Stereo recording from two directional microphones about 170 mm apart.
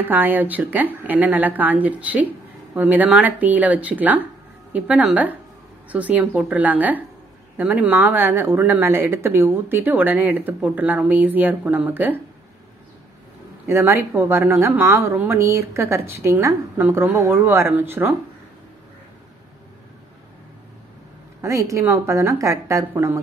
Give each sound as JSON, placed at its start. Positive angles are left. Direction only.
{"t": 0.0, "sound": "speech", "side_deg": -10}
{"t": 13.7, "sound": "speech", "side_deg": -15}
{"t": 21.4, "sound": "speech", "side_deg": -20}